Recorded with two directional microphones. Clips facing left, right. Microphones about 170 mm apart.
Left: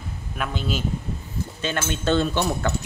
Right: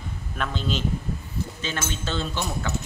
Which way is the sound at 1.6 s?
60° left (ahead or behind).